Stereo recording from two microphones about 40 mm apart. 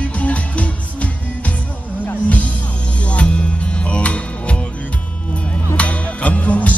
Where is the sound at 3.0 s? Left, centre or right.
Left.